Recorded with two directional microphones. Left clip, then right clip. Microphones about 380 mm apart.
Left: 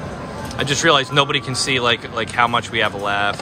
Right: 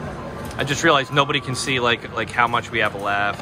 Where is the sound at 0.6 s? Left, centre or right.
Centre.